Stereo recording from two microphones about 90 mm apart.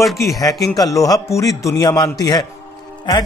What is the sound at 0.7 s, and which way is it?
A man's voice, 40° left (ahead or behind).